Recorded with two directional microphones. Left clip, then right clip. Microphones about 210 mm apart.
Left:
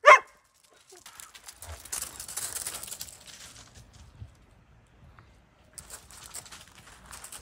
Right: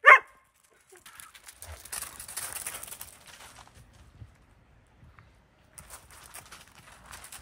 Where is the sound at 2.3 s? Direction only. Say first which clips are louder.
Left 1 dB; 10° right (ahead or behind).